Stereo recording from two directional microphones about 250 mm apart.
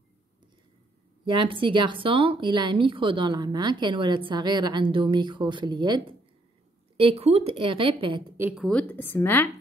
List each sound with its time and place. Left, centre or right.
1.2 s speech: centre
8.4 s a woman's voice: centre